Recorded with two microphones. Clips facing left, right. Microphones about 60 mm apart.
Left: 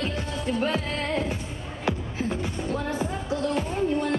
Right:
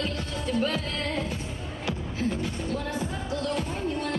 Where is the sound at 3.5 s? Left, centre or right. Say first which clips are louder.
Left 4 dB; left.